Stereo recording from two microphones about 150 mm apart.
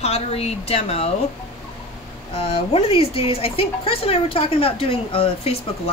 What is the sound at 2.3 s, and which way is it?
Speech, 40° left (ahead or behind).